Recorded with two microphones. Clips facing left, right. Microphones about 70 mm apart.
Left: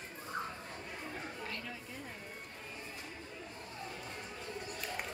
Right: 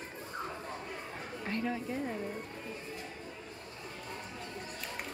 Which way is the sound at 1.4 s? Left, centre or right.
Right.